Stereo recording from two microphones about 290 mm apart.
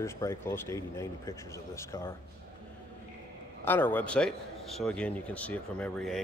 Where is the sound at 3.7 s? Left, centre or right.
Centre.